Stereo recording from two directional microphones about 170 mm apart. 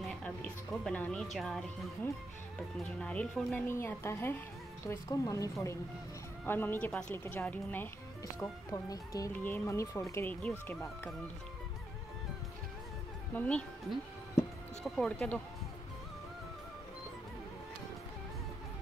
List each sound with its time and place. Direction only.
0.2 s speech: 5° left (ahead or behind)
2.8 s speech: 5° left (ahead or behind)
13.3 s speech: 10° left (ahead or behind)